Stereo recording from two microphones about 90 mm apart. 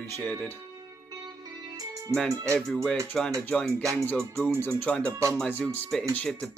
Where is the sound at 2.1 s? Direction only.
5° left (ahead or behind).